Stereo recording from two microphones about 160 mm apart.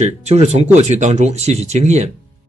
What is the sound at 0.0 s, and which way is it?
A man's voice, 40° right (ahead or behind).